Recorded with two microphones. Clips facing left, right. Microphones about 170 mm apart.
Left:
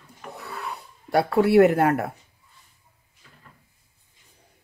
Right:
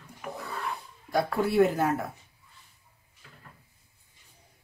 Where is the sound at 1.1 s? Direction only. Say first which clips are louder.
Left 7 dB; 70° left (ahead or behind).